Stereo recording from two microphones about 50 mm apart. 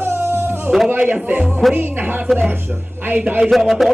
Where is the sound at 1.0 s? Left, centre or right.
Right.